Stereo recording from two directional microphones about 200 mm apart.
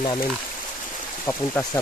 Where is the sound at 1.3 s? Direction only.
10° left (ahead or behind).